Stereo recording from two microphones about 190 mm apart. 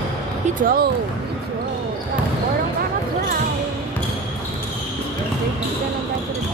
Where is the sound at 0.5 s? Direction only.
50° right (ahead or behind).